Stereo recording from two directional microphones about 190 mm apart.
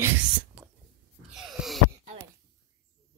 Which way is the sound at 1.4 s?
Centre (ahead or behind).